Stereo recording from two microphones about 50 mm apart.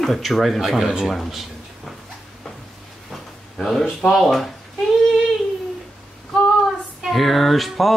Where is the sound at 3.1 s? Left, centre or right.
Centre.